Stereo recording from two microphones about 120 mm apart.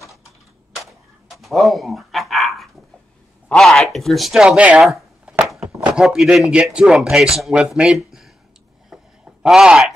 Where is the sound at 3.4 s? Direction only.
5° left (ahead or behind).